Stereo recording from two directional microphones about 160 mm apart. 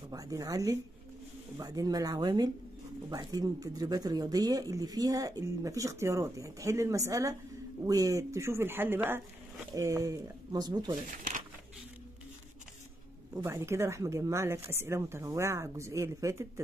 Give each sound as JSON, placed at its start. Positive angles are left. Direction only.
{"t": 0.1, "sound": "speech", "side_deg": -20}
{"t": 13.3, "sound": "speech", "side_deg": -15}